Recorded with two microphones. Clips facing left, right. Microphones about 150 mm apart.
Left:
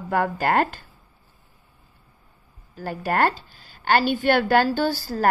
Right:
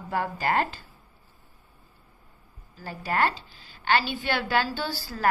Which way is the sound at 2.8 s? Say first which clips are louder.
Left 4 dB; 50° left (ahead or behind).